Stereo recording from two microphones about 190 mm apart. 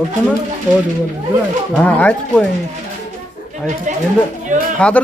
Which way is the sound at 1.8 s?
5° left (ahead or behind).